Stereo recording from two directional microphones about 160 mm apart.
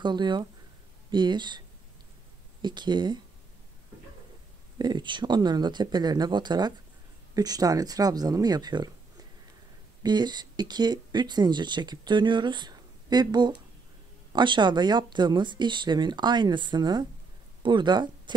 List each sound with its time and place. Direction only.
0.0 s speech: 30° right (ahead or behind)
2.6 s speech: 30° right (ahead or behind)
4.7 s speech: 25° right (ahead or behind)
10.0 s speech: 25° right (ahead or behind)